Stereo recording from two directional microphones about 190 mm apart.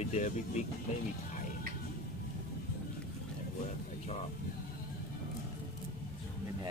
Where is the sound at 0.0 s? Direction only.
35° left (ahead or behind).